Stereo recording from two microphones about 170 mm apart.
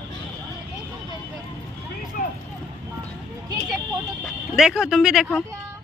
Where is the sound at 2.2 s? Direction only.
55° left (ahead or behind).